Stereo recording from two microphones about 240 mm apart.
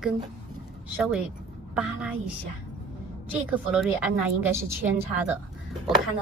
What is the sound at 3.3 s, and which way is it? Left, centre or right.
A woman's voice, centre.